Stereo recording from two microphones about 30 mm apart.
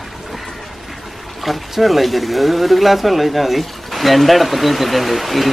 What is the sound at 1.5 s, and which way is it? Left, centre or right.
Speech, centre.